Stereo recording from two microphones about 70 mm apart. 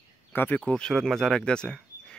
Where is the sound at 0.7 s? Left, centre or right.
Centre.